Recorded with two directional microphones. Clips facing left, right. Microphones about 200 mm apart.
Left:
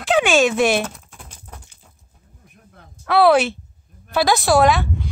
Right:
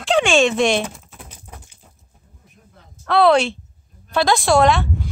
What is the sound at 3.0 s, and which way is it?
Speech, 5° left (ahead or behind).